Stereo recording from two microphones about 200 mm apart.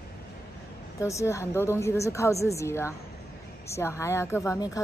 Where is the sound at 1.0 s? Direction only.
15° left (ahead or behind).